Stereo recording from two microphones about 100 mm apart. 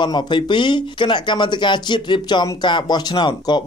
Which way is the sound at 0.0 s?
50° left (ahead or behind).